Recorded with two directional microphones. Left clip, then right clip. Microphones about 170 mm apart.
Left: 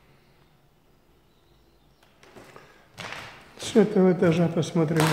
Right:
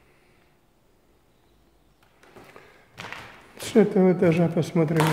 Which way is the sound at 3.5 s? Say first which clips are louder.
Right 1 dB; 25° right (ahead or behind).